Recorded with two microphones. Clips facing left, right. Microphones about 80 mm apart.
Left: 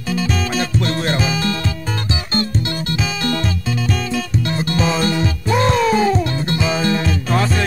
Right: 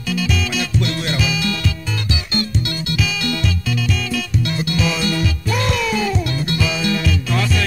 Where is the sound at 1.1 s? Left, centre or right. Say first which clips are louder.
Left 2 dB; left.